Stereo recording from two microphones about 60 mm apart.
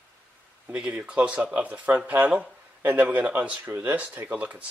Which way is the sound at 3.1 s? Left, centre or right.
Centre.